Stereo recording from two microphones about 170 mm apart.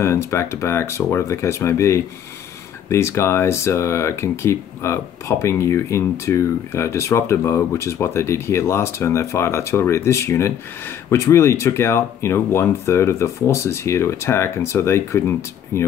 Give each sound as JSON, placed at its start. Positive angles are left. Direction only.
{"t": 0.0, "sound": "speech", "side_deg": 15}